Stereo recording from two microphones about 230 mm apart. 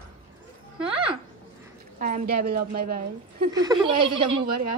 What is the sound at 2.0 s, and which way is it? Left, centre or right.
A woman's voice, right.